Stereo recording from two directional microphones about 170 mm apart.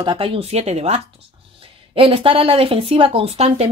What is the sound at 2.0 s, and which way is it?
A woman's voice, 30° right (ahead or behind).